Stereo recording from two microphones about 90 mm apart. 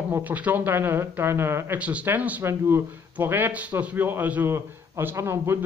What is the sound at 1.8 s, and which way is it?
A man's voice, 15° right (ahead or behind).